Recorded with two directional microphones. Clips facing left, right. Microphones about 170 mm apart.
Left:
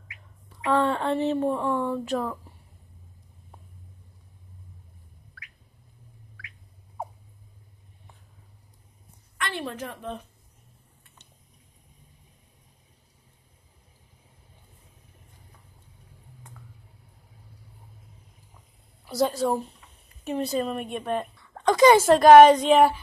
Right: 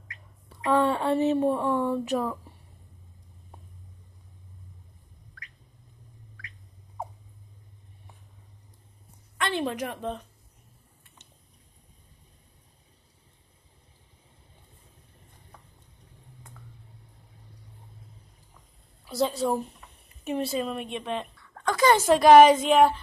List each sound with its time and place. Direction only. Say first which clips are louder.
0.7 s speech: even; 15° right (ahead or behind)
9.4 s a woman's voice: right 4 dB; 20° right (ahead or behind)
19.0 s speech: left 2 dB; 5° left (ahead or behind)
21.5 s a woman's voice: left 5 dB; 20° left (ahead or behind)
21.9 s a woman's voice: left 1 dB; centre (ahead or behind)